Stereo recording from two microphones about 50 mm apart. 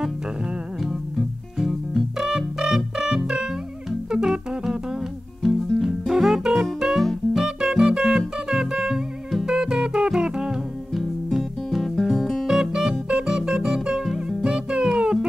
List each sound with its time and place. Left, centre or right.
1.6 s music: centre
5.8 s music: centre
10.9 s music: centre
12.4 s music: centre